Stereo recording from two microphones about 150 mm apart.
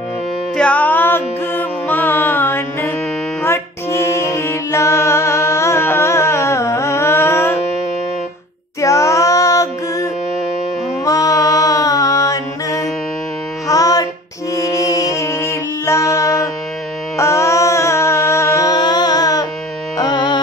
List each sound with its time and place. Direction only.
0.6 s music: 10° left (ahead or behind)
8.8 s female singing: 20° left (ahead or behind)
11.1 s music: 20° left (ahead or behind)
17.2 s carnatic music: 20° left (ahead or behind)